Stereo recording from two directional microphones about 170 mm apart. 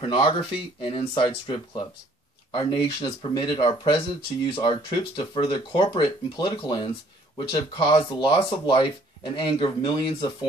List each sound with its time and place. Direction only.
0.0 s speech: 30° left (ahead or behind)